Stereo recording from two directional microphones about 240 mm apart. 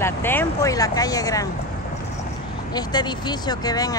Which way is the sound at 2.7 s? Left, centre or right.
Centre.